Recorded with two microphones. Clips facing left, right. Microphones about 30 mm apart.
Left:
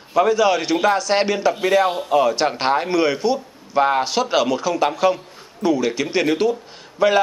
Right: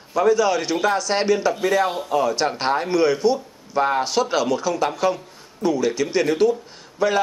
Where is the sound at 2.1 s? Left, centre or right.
Left.